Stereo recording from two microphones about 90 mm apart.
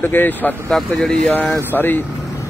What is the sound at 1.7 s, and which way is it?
Speech, 20° left (ahead or behind).